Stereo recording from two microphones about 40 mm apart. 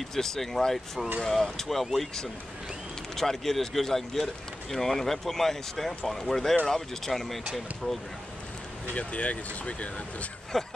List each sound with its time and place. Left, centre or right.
0.1 s speech: centre
8.9 s speech: left
10.5 s speech: centre